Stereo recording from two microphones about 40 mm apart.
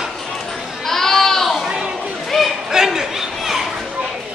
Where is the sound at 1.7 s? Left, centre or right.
Right.